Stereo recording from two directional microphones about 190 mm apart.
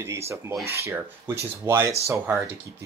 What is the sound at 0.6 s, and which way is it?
Speech, 55° right (ahead or behind).